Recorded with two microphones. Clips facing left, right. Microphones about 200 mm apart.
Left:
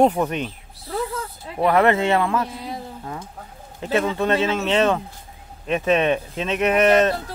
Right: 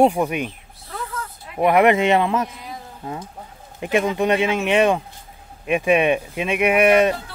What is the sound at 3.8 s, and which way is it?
Speech, 15° right (ahead or behind).